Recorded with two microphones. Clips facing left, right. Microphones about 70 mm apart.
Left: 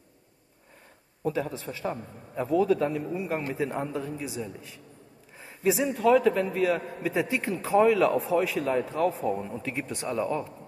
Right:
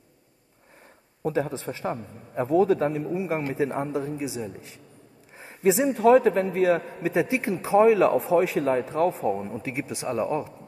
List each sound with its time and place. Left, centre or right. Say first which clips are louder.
1.2 s a man's voice: right 3 dB; right
5.4 s a sound: right 4 dB; right
5.9 s a man's voice: right 4 dB; right